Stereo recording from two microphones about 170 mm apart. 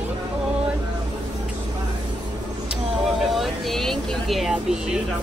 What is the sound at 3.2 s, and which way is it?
Speech, centre (ahead or behind).